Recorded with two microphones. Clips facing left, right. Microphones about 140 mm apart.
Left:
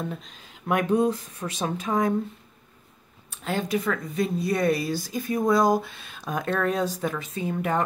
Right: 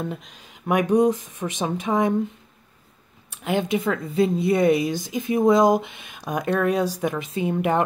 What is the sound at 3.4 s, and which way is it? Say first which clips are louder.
Speech: right 3 dB; 20° right (ahead or behind).